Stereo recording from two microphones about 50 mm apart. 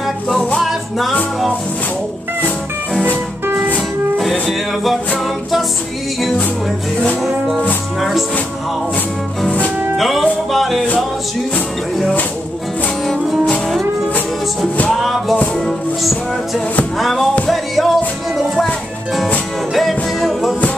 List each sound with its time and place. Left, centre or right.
0.6 s music: centre
3.5 s music: right
4.2 s speech: centre
7.2 s music: centre
9.9 s music: centre
13.0 s music: centre
15.0 s music: centre
19.7 s music: centre